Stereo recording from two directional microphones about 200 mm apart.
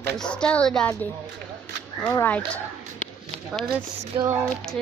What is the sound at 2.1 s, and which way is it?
Speech, 10° left (ahead or behind).